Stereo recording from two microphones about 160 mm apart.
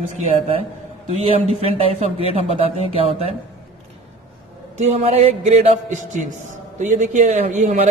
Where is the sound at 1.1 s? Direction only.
40° right (ahead or behind).